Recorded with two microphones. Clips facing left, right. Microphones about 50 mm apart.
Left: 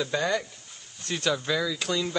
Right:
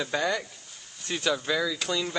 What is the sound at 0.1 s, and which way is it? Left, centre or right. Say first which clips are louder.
Speech: left 1 dB; centre.